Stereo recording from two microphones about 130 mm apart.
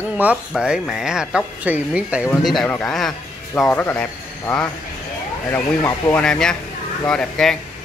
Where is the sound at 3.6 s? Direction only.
15° left (ahead or behind).